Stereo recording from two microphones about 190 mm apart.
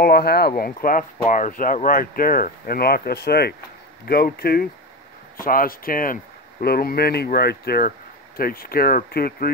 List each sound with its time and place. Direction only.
0.0 s speech: 55° left (ahead or behind)